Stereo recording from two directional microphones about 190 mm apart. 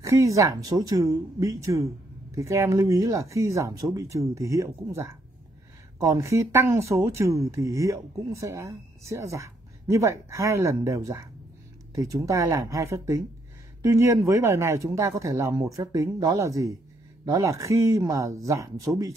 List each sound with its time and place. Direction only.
0.0 s speech: 15° right (ahead or behind)